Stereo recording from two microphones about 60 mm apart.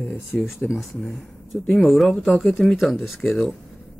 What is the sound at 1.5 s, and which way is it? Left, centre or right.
Speech, centre.